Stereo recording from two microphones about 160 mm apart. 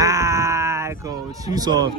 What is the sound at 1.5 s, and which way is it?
Speech, 25° right (ahead or behind).